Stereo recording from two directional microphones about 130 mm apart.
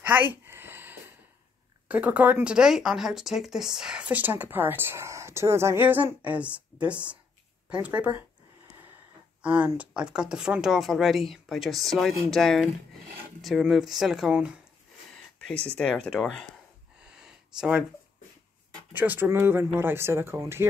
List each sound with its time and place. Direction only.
0.0 s a sound: 15° right (ahead or behind)
1.9 s speech: 10° right (ahead or behind)
9.4 s speech: 10° right (ahead or behind)
15.4 s speech: 10° left (ahead or behind)
17.0 s a sound: 5° right (ahead or behind)
18.9 s speech: 15° right (ahead or behind)